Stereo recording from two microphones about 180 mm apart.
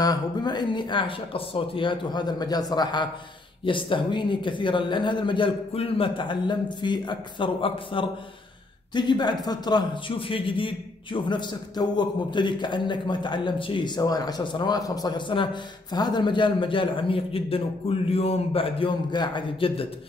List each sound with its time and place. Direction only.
0.0 s a man's voice: 20° left (ahead or behind)